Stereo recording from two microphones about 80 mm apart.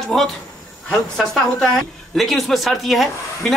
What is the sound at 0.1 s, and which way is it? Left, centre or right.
Speech, centre.